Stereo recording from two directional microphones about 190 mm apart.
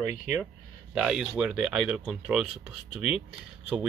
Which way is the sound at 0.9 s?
5° right (ahead or behind).